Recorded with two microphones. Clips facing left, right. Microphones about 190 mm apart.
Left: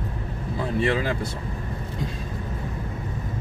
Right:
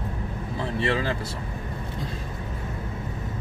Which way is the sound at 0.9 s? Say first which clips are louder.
Even; 15° left (ahead or behind).